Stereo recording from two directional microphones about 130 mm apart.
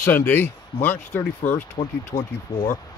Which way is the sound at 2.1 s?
80° left.